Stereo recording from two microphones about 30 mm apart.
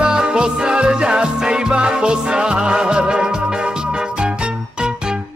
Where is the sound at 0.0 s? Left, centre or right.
Right.